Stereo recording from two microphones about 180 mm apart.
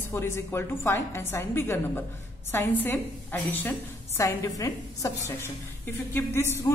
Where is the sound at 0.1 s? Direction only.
15° left (ahead or behind).